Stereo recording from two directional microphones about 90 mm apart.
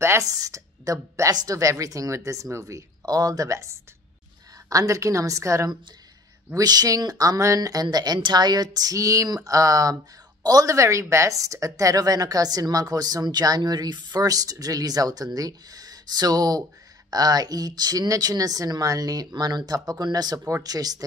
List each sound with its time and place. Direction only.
0.0 s speech: 35° right (ahead or behind)
6.5 s a woman's voice: 45° right (ahead or behind)